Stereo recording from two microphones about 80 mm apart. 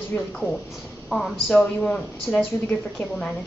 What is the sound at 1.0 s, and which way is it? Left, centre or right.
Speech, centre.